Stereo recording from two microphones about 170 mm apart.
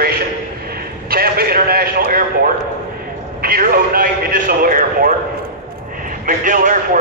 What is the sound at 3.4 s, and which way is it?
A man's voice, 60° right (ahead or behind).